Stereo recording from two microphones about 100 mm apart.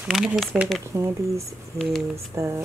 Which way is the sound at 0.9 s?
30° right (ahead or behind).